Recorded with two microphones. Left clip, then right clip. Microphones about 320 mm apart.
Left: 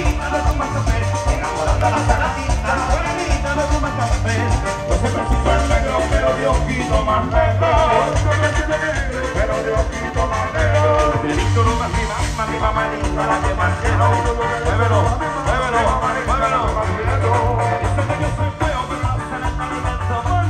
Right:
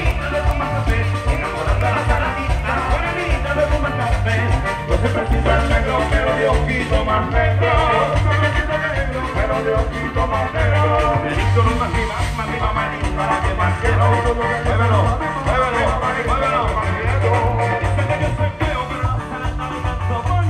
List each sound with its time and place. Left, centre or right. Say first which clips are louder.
7.7 s music: left 1 dB; left